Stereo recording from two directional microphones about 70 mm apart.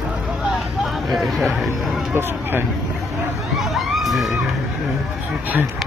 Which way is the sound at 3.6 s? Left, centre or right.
Centre.